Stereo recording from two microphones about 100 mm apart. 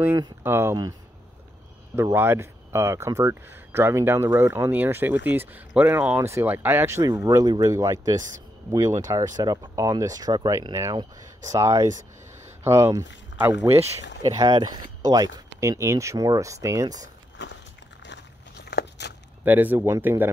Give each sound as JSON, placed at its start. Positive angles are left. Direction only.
{"t": 0.4, "sound": "speech", "side_deg": -25}
{"t": 2.1, "sound": "speech", "side_deg": -25}
{"t": 7.2, "sound": "speech", "side_deg": -35}
{"t": 14.2, "sound": "speech", "side_deg": -40}
{"t": 15.8, "sound": "speech", "side_deg": -30}
{"t": 19.4, "sound": "speech", "side_deg": -15}